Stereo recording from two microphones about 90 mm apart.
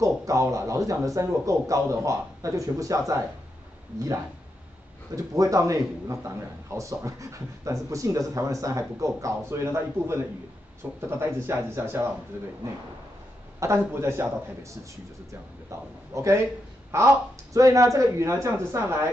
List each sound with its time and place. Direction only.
0.0 s a man's voice: 40° right (ahead or behind)
5.1 s a man's voice: 40° right (ahead or behind)
13.6 s a man's voice: 30° right (ahead or behind)